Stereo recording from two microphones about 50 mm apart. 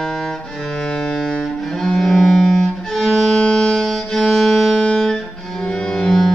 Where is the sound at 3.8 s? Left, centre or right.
Centre.